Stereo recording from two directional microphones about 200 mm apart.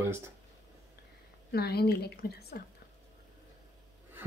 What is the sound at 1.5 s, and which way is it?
A woman's voice, 55° left (ahead or behind).